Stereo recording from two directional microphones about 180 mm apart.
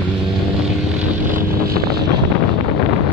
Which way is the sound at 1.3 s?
55° right (ahead or behind).